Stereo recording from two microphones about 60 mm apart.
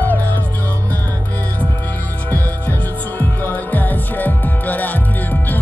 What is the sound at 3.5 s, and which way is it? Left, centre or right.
Music, left.